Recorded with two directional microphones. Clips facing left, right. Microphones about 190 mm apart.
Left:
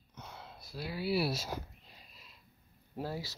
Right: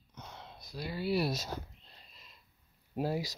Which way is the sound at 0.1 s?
5° left (ahead or behind).